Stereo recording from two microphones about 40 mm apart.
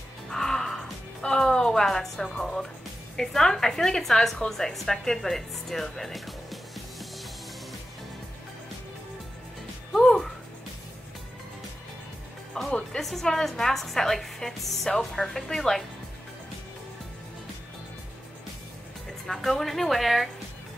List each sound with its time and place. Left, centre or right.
0.3 s music: centre
3.2 s a woman's voice: centre
10.0 s music: centre
12.6 s music: centre
12.9 s a woman's voice: centre
19.2 s a woman's voice: centre